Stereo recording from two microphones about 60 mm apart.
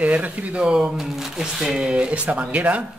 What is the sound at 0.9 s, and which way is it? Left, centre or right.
Speech, centre.